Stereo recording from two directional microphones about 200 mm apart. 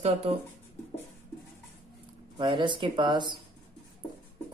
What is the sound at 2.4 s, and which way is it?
Speech, 25° right (ahead or behind).